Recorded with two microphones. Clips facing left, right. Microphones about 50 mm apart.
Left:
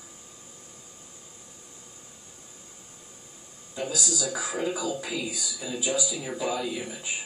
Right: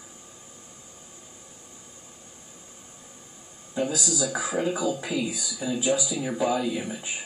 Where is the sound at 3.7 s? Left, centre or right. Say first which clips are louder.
Right 4 dB; right.